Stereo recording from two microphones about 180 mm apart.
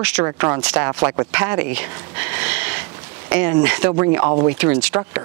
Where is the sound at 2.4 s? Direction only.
10° right (ahead or behind).